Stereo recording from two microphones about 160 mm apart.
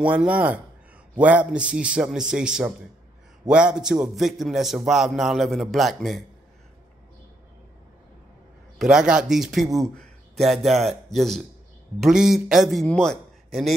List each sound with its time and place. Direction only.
0.0 s a man's voice: 5° right (ahead or behind)
8.7 s a man's voice: 5° right (ahead or behind)